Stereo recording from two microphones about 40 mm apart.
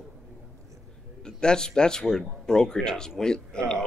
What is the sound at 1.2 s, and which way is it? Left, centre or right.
Speech, centre.